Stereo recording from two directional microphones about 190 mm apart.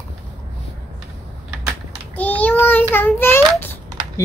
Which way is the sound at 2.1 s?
10° left (ahead or behind).